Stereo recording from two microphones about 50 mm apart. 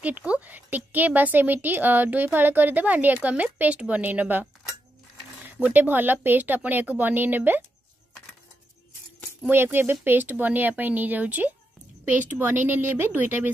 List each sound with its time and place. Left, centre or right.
0.0 s speech: right
4.0 s speech: right
9.5 s a woman's voice: right